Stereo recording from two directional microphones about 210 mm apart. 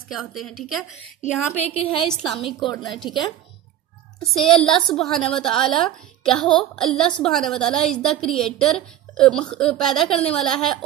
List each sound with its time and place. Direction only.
0.1 s a woman's voice: centre (ahead or behind)
1.2 s a woman's voice: 30° left (ahead or behind)
2.0 s a woman's voice: centre (ahead or behind)
3.0 s a woman's voice: 20° left (ahead or behind)
4.2 s a woman's voice: centre (ahead or behind)